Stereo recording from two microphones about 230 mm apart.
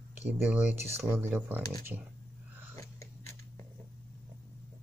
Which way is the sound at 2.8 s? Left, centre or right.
Centre.